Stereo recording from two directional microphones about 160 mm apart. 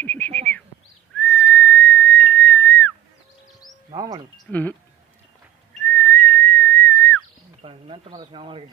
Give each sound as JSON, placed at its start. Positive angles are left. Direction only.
{"t": 0.0, "sound": "bird", "side_deg": 10}
{"t": 1.1, "sound": "whistling", "side_deg": 5}
{"t": 3.9, "sound": "cricket", "side_deg": -25}
{"t": 4.5, "sound": "speech", "side_deg": 10}
{"t": 5.9, "sound": "whistling", "side_deg": 10}
{"t": 7.6, "sound": "a sound", "side_deg": -35}